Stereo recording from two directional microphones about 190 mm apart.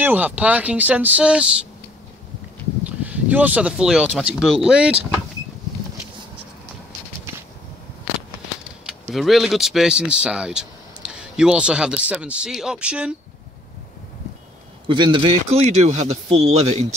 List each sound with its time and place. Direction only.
0.0 s speech: 10° right (ahead or behind)
3.0 s speech: 10° right (ahead or behind)
9.1 s speech: centre (ahead or behind)
14.9 s a man's voice: 25° right (ahead or behind)